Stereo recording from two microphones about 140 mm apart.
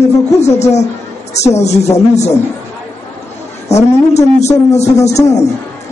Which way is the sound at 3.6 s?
55° left (ahead or behind).